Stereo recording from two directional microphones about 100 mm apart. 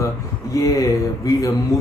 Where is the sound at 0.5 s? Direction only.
35° left (ahead or behind).